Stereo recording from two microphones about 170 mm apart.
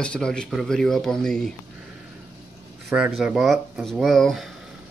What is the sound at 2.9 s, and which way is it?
Speech, 5° right (ahead or behind).